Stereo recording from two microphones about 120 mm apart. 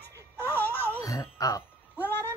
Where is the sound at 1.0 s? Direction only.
30° left (ahead or behind).